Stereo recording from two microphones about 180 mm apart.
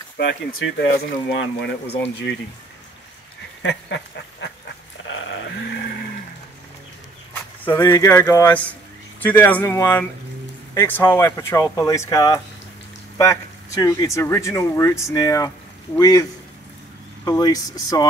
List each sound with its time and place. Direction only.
0.2 s speech: 70° left (ahead or behind)
3.6 s duck: 75° left (ahead or behind)
7.6 s speech: 15° left (ahead or behind)